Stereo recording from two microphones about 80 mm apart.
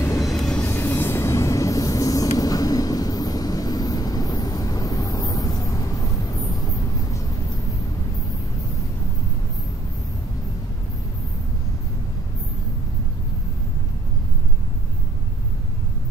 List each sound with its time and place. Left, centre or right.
0.2 s vehicle: centre
0.7 s train: left